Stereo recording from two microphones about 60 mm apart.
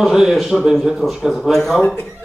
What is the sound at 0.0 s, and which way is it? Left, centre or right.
A man's voice, centre.